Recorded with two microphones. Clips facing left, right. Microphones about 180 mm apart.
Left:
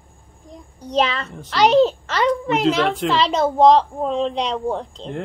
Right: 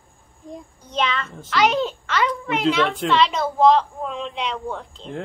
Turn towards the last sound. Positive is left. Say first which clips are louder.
# left 6 dB
turn(degrees=30)  # may be behind; listen again after turning